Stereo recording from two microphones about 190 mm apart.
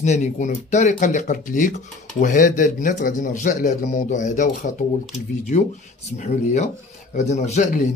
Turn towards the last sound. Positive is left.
turn(degrees=40)  # may be behind; listen again after turning